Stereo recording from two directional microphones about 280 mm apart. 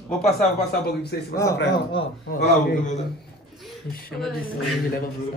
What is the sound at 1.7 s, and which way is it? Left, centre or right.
Speech, centre.